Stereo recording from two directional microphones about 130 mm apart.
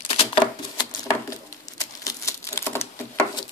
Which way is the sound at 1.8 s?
25° left (ahead or behind).